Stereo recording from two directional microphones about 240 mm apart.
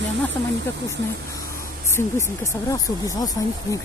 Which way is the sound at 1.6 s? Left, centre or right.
Centre.